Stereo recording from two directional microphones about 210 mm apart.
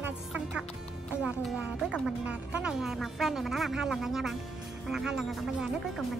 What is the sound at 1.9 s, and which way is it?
Speech, 5° right (ahead or behind).